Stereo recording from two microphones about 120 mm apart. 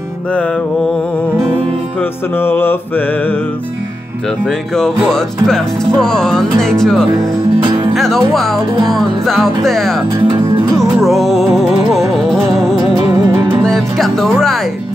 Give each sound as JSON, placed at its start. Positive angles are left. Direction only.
{"t": 2.0, "sound": "music", "side_deg": 15}
{"t": 4.5, "sound": "speech", "side_deg": 5}
{"t": 7.6, "sound": "music", "side_deg": -45}
{"t": 7.9, "sound": "music", "side_deg": 0}
{"t": 8.8, "sound": "speech", "side_deg": 0}
{"t": 10.2, "sound": "music", "side_deg": -35}
{"t": 10.8, "sound": "music", "side_deg": 0}
{"t": 13.1, "sound": "music", "side_deg": -25}
{"t": 13.6, "sound": "music", "side_deg": 0}